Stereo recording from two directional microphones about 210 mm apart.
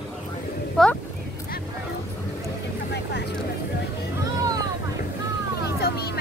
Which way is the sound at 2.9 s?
55° left (ahead or behind).